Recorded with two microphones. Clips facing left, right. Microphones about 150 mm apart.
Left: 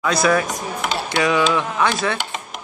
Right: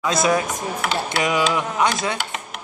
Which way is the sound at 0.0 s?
20° right (ahead or behind).